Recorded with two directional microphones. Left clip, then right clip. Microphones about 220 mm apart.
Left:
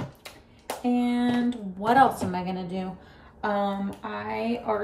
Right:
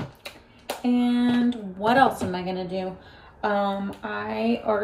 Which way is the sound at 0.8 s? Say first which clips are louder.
Right 2 dB; 50° left (ahead or behind).